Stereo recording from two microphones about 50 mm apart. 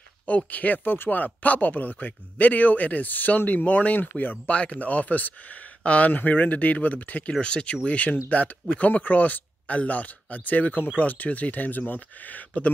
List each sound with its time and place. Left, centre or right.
0.5 s speech: left
7.3 s speech: centre